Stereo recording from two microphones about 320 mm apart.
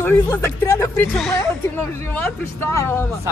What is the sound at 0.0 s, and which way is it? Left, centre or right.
Speech, centre.